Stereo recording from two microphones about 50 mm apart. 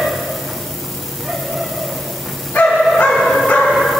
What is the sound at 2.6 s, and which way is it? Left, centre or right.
Bow-wow, left.